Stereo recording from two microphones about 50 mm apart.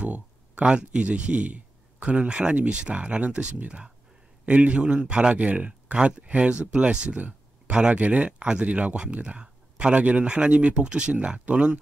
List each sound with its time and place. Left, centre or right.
0.0 s speech: right